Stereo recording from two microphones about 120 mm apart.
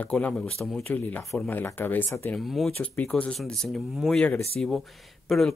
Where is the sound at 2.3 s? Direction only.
Centre (ahead or behind).